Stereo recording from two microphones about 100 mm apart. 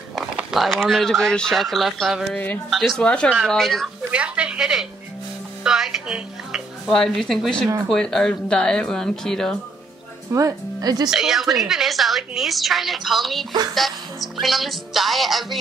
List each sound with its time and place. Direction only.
0.1 s speech: 5° right (ahead or behind)
2.3 s speech: 15° left (ahead or behind)
2.7 s a woman's voice: centre (ahead or behind)
3.0 s a woman's voice: 10° left (ahead or behind)
4.1 s speech: 10° right (ahead or behind)
6.9 s a woman's voice: 5° left (ahead or behind)
10.3 s speech: 35° right (ahead or behind)
11.1 s a woman's voice: 5° right (ahead or behind)